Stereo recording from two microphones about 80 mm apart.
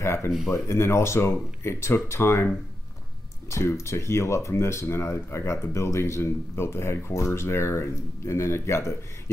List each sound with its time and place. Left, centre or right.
0.0 s speech: left